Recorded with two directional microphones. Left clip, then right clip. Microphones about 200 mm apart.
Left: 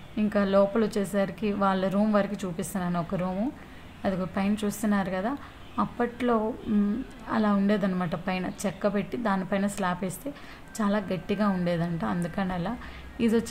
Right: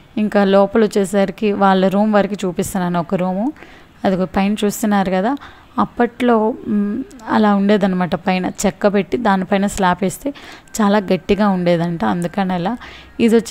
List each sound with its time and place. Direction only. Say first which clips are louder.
0.1 s a woman's voice: right 11 dB; 45° right (ahead or behind)